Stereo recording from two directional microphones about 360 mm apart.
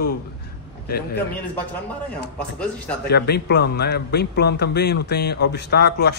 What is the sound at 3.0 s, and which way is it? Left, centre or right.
A man's voice, left.